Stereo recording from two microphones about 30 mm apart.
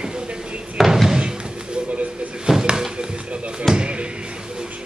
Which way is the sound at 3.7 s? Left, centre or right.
Centre.